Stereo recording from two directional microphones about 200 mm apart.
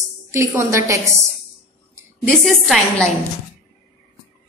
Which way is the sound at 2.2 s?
Centre (ahead or behind).